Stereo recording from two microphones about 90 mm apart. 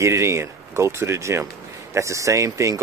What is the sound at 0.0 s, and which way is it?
Speech, 30° right (ahead or behind).